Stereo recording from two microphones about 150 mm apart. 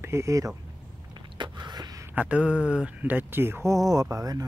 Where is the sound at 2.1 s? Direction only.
10° right (ahead or behind).